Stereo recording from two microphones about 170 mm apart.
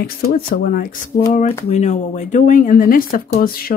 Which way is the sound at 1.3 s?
45° left (ahead or behind).